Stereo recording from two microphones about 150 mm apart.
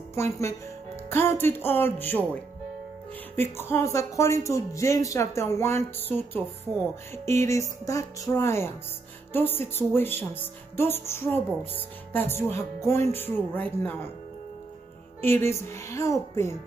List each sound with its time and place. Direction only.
0.1 s speech: 20° left (ahead or behind)
1.1 s music: 15° left (ahead or behind)
3.3 s speech: 15° left (ahead or behind)
9.3 s music: 15° left (ahead or behind)
15.2 s music: 15° left (ahead or behind)